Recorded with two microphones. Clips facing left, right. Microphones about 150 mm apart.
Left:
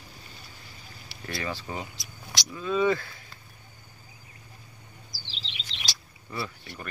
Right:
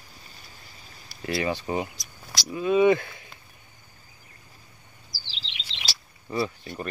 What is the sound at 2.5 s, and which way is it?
Speech, 15° right (ahead or behind).